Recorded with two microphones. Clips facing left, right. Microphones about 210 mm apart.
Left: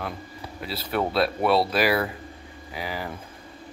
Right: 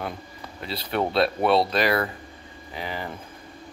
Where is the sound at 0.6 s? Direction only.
5° left (ahead or behind).